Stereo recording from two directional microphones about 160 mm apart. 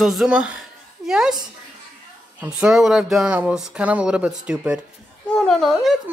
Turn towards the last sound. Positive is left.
turn(degrees=0)  # may be behind; listen again after turning